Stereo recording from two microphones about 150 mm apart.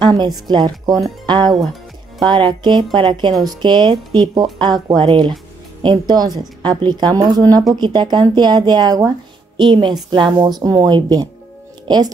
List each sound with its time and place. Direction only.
0.0 s a woman's voice: 30° right (ahead or behind)